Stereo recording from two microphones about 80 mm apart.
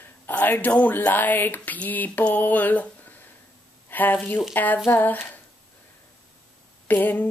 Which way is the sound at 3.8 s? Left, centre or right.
Left.